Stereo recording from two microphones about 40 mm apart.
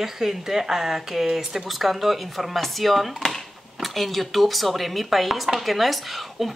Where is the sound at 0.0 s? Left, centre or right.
Centre.